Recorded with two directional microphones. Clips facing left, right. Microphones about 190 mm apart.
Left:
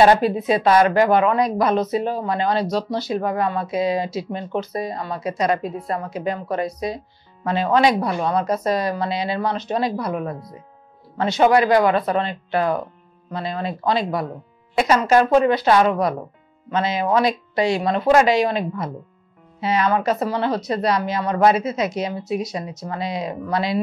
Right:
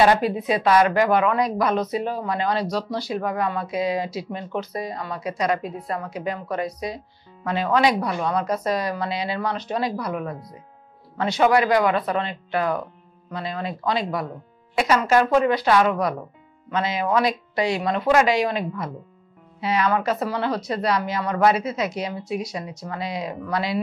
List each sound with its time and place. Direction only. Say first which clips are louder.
0.0 s speech: left 3 dB; 30° left (ahead or behind)